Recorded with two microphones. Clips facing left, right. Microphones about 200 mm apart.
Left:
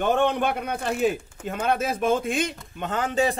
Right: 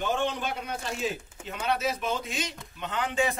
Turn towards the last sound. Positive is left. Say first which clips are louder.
# left 4 dB
turn(degrees=35)  # may be behind; listen again after turning